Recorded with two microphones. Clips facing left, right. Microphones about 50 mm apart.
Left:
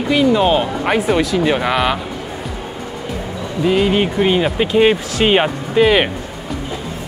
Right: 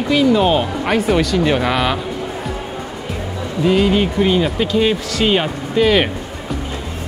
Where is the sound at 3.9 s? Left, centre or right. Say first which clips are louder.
Even; left.